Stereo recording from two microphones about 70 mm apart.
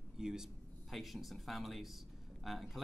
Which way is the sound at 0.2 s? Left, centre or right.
Centre.